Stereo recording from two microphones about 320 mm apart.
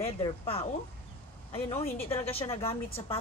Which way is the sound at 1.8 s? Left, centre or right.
Centre.